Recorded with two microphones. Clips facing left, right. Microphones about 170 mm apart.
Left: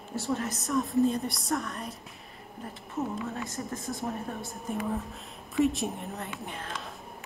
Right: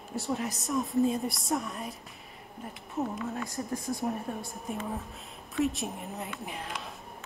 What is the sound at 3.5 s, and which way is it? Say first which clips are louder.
A woman's voice: right 2 dB; centre (ahead or behind).